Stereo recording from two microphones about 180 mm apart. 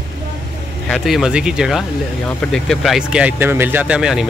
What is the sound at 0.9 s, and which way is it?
Speech, centre (ahead or behind).